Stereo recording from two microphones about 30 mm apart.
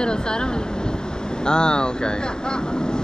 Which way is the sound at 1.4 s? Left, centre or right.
Left.